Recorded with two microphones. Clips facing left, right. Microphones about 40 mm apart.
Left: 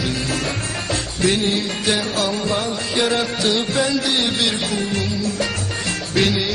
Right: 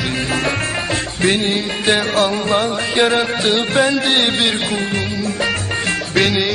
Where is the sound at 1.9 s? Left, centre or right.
Right.